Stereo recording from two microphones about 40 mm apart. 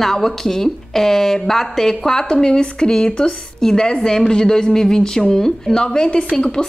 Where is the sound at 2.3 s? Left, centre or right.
Left.